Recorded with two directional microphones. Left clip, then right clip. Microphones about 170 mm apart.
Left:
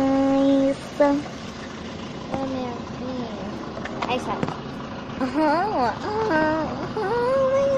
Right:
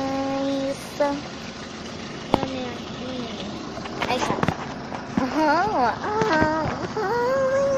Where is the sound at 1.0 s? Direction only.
30° left (ahead or behind).